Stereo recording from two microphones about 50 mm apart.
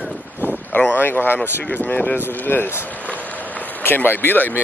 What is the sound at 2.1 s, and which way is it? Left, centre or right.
Speech, left.